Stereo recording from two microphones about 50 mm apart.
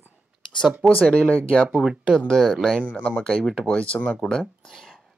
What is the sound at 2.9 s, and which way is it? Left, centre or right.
Speech, left.